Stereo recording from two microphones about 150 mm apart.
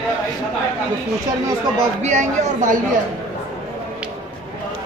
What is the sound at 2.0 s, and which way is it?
Speech, 55° right (ahead or behind).